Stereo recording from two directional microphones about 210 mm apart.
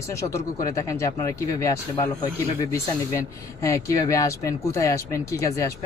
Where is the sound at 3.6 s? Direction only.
15° left (ahead or behind).